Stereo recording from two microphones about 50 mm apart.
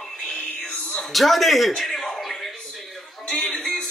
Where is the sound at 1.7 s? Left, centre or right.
Centre.